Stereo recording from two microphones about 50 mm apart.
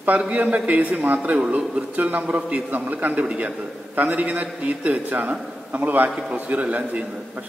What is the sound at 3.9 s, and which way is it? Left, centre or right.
A man's voice, right.